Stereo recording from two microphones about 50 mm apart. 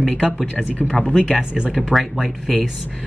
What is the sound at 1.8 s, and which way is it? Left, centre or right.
Speech, centre.